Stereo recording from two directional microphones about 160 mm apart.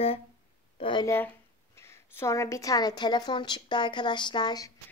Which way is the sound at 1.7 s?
15° left (ahead or behind).